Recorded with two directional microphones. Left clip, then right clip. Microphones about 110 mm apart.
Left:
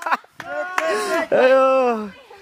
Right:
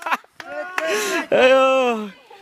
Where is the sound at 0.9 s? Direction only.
20° right (ahead or behind).